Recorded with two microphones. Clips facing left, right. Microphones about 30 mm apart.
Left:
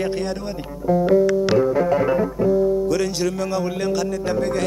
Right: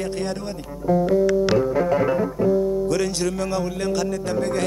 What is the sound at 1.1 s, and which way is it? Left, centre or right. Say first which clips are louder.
Music: left 2 dB; centre.